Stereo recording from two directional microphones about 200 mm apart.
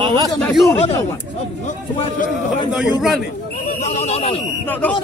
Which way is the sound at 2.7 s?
Centre (ahead or behind).